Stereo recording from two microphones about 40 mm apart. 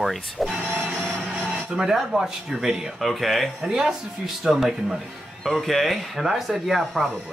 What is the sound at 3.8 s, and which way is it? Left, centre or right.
Speech, centre.